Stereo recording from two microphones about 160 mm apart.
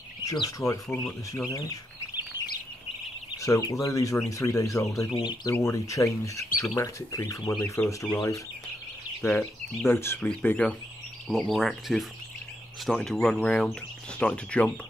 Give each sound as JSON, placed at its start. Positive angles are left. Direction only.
{"t": 0.2, "sound": "speech", "side_deg": 20}
{"t": 1.5, "sound": "bird", "side_deg": 25}
{"t": 3.3, "sound": "speech", "side_deg": 20}
{"t": 9.8, "sound": "speech", "side_deg": 15}
{"t": 11.2, "sound": "speech", "side_deg": 0}